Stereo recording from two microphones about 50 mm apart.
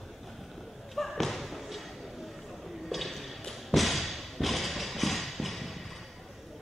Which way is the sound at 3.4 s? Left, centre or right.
Centre.